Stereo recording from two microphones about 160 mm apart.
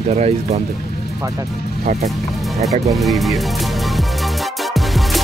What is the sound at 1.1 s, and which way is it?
Speech, 20° right (ahead or behind).